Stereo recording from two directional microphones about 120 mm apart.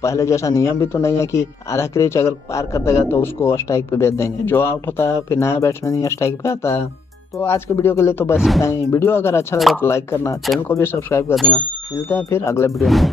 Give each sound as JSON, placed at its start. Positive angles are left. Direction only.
{"t": 0.0, "sound": "a man's voice", "side_deg": 25}
{"t": 8.4, "sound": "speech", "side_deg": 0}
{"t": 8.6, "sound": "a man's voice", "side_deg": 20}
{"t": 12.7, "sound": "speech", "side_deg": 0}